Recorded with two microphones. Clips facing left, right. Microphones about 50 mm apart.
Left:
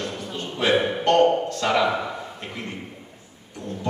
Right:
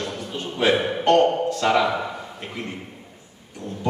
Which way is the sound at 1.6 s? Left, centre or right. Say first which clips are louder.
Right 2 dB; centre.